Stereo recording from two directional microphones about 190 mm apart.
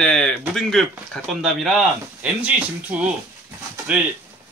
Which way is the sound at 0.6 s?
5° left (ahead or behind).